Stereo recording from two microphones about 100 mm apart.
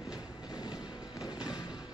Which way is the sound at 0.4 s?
45° left (ahead or behind).